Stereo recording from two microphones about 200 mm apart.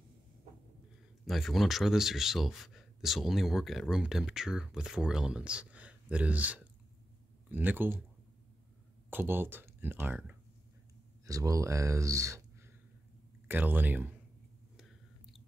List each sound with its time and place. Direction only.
1.2 s speech: centre (ahead or behind)
9.1 s speech: 10° right (ahead or behind)
13.5 s speech: 10° right (ahead or behind)